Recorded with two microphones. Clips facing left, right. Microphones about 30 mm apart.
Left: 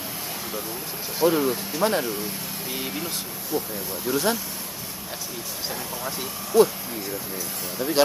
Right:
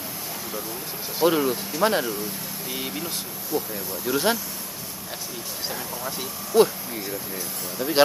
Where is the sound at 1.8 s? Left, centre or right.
Centre.